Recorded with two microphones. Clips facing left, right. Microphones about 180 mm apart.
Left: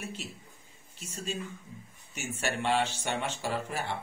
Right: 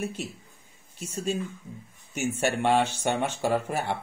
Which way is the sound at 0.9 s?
50° right (ahead or behind).